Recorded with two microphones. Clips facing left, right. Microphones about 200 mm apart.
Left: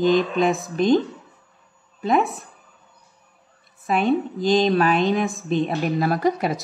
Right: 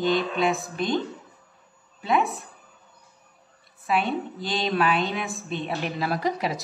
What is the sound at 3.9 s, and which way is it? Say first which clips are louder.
A woman's voice: left 5 dB; 45° left (ahead or behind).